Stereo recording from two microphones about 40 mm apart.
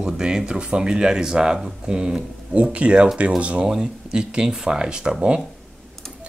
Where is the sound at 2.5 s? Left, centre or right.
Right.